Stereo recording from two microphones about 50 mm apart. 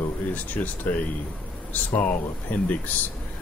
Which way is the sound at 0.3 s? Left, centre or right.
Left.